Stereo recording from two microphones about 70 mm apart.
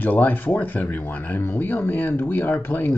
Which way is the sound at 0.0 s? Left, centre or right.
Left.